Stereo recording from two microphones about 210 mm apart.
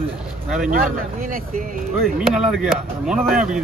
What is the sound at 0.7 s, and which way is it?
Speech, 40° right (ahead or behind).